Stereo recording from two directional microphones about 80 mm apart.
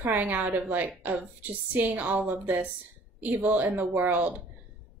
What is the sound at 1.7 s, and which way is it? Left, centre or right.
A woman's voice, right.